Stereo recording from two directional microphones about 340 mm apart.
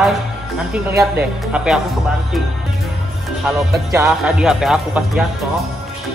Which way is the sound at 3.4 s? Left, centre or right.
Centre.